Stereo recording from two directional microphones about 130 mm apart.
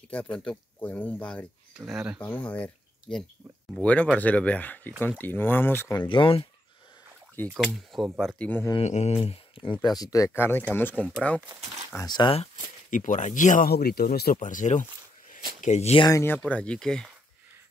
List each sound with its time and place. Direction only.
0.1 s speech: 10° left (ahead or behind)
1.7 s speech: 5° right (ahead or behind)
2.2 s speech: 10° left (ahead or behind)
5.9 s speech: 40° left (ahead or behind)
7.5 s speech: centre (ahead or behind)
8.8 s speech: 60° left (ahead or behind)
9.8 s speech: 30° left (ahead or behind); by 11.1 s 10° left (ahead or behind)
12.1 s speech: 35° left (ahead or behind)
12.9 s speech: 75° left (ahead or behind)
15.3 s a sound: 75° left (ahead or behind)
16.0 s speech: 25° left (ahead or behind)
16.3 s speech: 15° left (ahead or behind)